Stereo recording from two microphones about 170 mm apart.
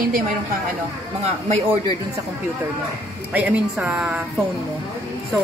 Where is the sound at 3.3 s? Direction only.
10° right (ahead or behind).